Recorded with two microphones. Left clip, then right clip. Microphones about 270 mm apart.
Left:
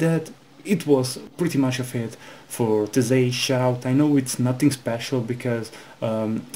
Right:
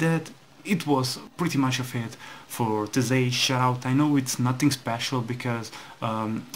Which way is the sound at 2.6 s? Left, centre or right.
Right.